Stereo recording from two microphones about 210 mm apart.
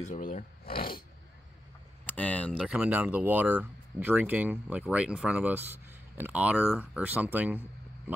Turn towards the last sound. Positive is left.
turn(degrees=-5)  # may be behind; listen again after turning